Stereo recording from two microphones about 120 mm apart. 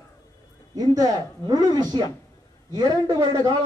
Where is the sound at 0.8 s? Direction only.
30° right (ahead or behind).